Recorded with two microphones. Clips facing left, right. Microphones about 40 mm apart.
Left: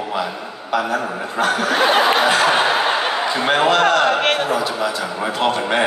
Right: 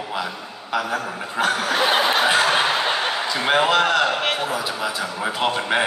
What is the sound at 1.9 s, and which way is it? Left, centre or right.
Snicker, centre.